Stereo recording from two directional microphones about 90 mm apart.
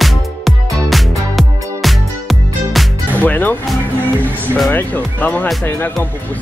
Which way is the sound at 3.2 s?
20° left (ahead or behind).